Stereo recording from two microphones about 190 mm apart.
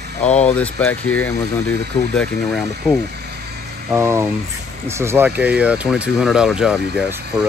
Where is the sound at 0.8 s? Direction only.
90° left.